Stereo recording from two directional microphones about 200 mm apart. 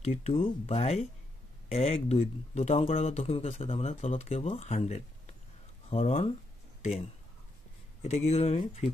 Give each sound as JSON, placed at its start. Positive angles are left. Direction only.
{"t": 0.0, "sound": "speech", "side_deg": 30}
{"t": 8.0, "sound": "speech", "side_deg": 35}